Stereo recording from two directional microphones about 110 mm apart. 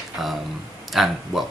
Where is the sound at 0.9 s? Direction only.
Centre (ahead or behind).